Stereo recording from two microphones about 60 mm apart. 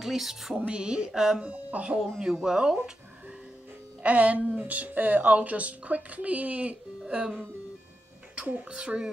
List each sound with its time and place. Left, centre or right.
0.0 s speech: centre
1.5 s speech: right
2.0 s speech: centre
4.0 s a woman's voice: right
8.4 s speech: right
8.6 s speech: centre